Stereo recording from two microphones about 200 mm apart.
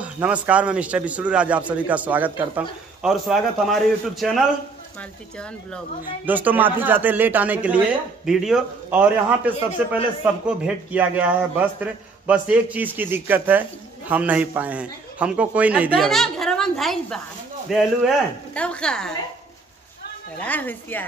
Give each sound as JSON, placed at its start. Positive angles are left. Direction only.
{"t": 0.0, "sound": "a man's voice", "side_deg": -5}
{"t": 6.2, "sound": "a man's voice", "side_deg": -10}
{"t": 20.4, "sound": "speech", "side_deg": 10}